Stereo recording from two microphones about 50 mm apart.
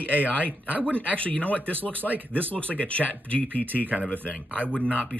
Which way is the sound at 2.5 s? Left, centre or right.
Left.